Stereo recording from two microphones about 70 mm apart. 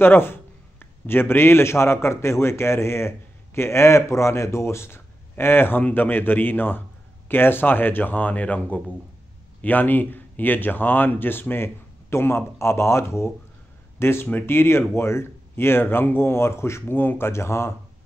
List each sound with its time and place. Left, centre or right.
0.0 s a man's voice: left